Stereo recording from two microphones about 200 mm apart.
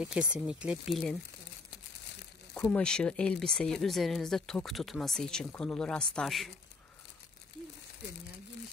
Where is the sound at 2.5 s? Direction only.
5° left (ahead or behind).